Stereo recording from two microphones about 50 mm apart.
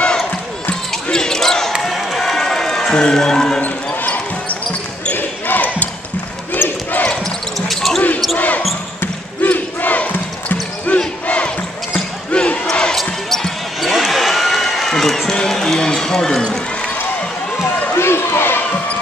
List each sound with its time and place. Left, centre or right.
1.1 s basketball bounce: centre
1.8 s a sound: centre
3.6 s basketball bounce: left
7.5 s basketball bounce: centre
8.4 s basketball bounce: left
11.2 s battle cry: left
12.3 s basketball bounce: left
12.9 s basketball bounce: centre
15.3 s run: centre
17.9 s run: left